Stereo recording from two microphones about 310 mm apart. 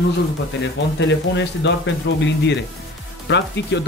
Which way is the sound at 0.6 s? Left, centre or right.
Left.